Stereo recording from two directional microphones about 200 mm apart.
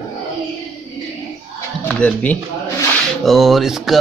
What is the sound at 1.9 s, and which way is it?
Speech, 5° left (ahead or behind).